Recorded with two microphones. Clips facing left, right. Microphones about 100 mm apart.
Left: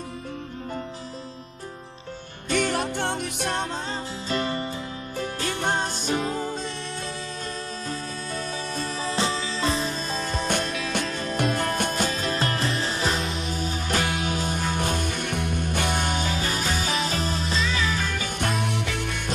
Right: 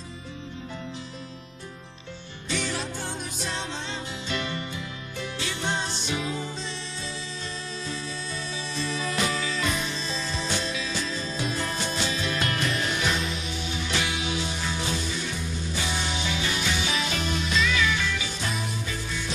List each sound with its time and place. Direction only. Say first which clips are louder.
2.5 s music: left 6 dB; 55° left (ahead or behind)
4.3 s music: left 5 dB; 35° left (ahead or behind)
5.2 s music: left 4 dB; 50° left (ahead or behind)
8.7 s music: even; 40° left (ahead or behind)
18.6 s music: left 5 dB; 70° left (ahead or behind)